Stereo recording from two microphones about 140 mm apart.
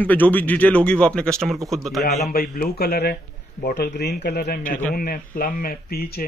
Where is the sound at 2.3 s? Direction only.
90° left.